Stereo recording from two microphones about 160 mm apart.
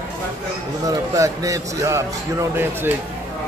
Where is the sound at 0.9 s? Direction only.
20° right (ahead or behind).